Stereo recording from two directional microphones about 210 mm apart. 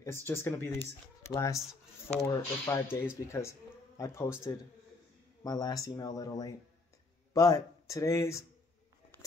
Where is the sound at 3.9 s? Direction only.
15° left (ahead or behind).